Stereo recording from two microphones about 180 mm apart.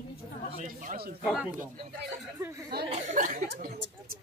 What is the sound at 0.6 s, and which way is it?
Speech, 50° right (ahead or behind).